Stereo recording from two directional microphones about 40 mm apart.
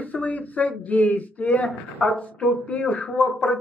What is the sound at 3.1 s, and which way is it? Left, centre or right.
Speech, centre.